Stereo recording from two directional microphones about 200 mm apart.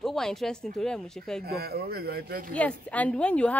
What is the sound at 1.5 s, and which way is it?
Speech, 50° right (ahead or behind).